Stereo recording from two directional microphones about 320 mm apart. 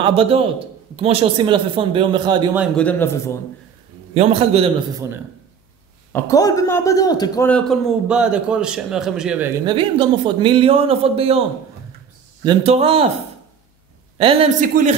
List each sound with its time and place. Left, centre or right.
0.0 s a man's voice: centre
4.1 s a man's voice: centre
6.1 s a man's voice: centre
9.7 s a man's voice: centre
12.4 s a man's voice: centre
14.1 s a man's voice: centre